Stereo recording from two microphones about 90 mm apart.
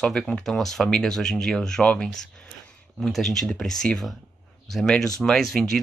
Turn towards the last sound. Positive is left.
turn(degrees=0)  # may be behind; listen again after turning